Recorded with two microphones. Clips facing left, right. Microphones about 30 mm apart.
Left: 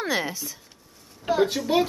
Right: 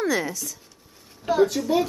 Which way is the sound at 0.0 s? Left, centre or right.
Left.